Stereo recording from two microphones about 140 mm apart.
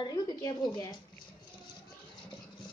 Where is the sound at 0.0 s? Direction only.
30° left (ahead or behind).